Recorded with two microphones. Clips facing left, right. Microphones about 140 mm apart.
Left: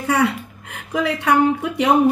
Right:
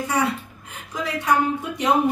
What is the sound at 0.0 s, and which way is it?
Speech, 65° left (ahead or behind).